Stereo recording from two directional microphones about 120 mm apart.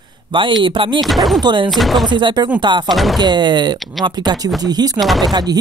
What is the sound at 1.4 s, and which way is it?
Speech, 40° right (ahead or behind).